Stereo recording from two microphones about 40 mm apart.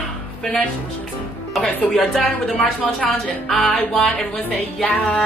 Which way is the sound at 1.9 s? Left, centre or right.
Centre.